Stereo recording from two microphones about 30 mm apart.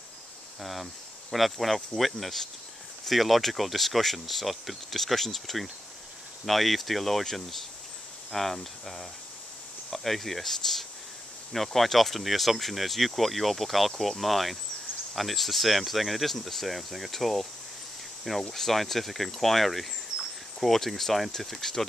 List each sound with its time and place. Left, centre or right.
0.6 s speech: centre
18.5 s speech: centre